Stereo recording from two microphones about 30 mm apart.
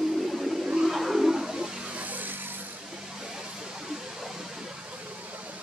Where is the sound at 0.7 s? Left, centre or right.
Centre.